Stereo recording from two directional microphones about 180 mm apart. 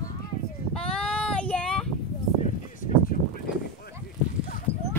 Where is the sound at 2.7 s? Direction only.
50° left (ahead or behind).